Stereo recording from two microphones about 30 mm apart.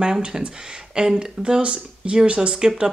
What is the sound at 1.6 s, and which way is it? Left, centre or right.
Speech, right.